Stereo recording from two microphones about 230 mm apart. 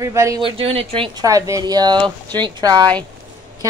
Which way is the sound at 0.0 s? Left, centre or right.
Centre.